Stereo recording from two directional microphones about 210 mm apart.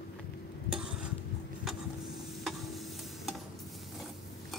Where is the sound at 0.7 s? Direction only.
5° right (ahead or behind).